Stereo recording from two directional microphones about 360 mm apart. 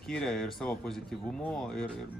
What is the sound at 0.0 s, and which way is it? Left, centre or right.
Speech, centre.